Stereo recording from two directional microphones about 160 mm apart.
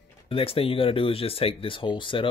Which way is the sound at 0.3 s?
35° left (ahead or behind).